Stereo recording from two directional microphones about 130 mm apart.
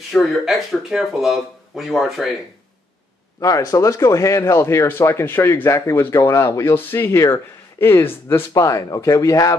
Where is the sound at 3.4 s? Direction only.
25° left (ahead or behind).